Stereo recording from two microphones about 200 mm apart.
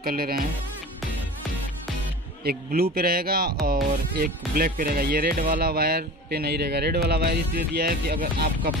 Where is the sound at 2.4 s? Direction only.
50° right (ahead or behind).